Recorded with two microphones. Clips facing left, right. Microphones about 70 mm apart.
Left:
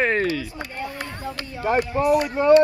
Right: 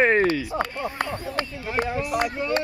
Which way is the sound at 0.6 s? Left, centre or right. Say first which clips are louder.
Right 4 dB; right.